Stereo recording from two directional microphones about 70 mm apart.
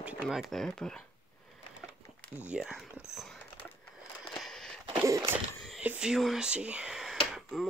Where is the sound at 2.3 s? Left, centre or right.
Right.